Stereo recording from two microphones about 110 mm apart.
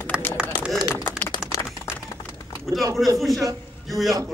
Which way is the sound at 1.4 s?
5° right (ahead or behind).